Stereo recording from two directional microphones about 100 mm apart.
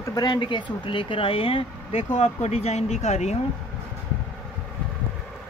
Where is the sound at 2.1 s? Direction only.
90° left.